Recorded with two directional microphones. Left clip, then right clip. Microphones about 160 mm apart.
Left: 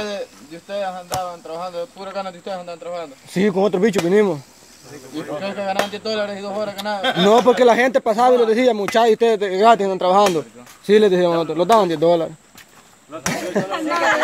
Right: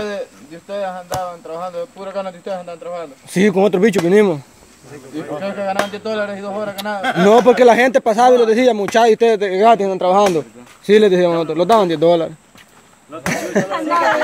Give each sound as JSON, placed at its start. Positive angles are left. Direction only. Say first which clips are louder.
{"t": 0.7, "sound": "a man's voice", "louder": "right 2 dB", "side_deg": -15}
{"t": 13.3, "sound": "a sound", "louder": "right 4 dB", "side_deg": -10}
{"t": 13.7, "sound": "speech", "louder": "right 4 dB", "side_deg": -30}